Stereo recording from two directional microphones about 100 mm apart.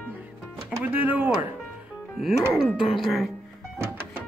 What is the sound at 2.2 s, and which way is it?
Speech, centre (ahead or behind).